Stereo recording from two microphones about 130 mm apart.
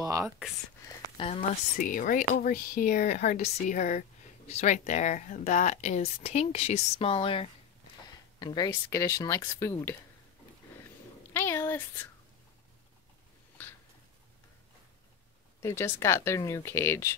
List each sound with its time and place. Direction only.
0.0 s speech: 25° right (ahead or behind)
1.1 s speech: 55° left (ahead or behind)
1.8 s speech: 90° left; by 7.4 s 45° left (ahead or behind)
8.4 s speech: 35° left (ahead or behind)
11.3 s speech: 15° left (ahead or behind)
15.6 s speech: 20° left (ahead or behind)